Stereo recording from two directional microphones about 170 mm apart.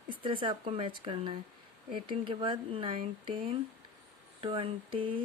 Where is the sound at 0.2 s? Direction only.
30° right (ahead or behind).